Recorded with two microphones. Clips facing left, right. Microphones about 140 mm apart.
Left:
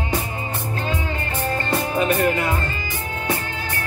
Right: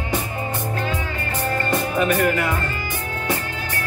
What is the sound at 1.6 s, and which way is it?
Music, 25° left (ahead or behind).